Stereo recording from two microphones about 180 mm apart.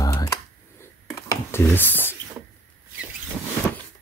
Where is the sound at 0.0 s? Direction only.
20° left (ahead or behind).